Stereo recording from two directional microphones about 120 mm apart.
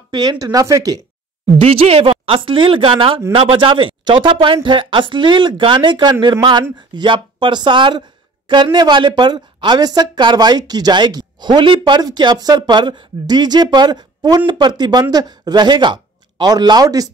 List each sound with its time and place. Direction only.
0.1 s speech: 35° right (ahead or behind)
1.6 s a woman's voice: 55° right (ahead or behind); by 17.1 s 30° right (ahead or behind)